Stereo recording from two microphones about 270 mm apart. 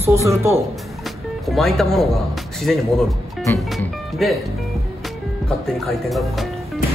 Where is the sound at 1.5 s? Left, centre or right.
Centre.